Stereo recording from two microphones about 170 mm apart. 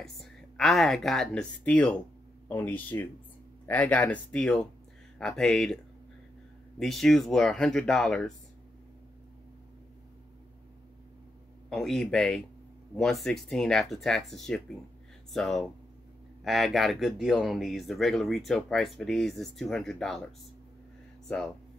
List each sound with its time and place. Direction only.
0.0 s speech: centre (ahead or behind)
6.8 s speech: centre (ahead or behind)
11.7 s speech: centre (ahead or behind)